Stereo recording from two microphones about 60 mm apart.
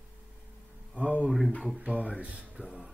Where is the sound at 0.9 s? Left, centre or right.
Right.